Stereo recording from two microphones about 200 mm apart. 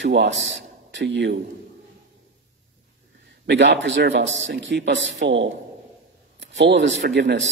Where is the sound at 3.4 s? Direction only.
60° right (ahead or behind).